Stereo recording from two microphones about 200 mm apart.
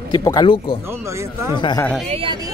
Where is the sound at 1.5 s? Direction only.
20° left (ahead or behind).